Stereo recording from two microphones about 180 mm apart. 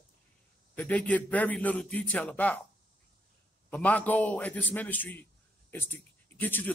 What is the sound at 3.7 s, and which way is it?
A man's voice, 5° left (ahead or behind).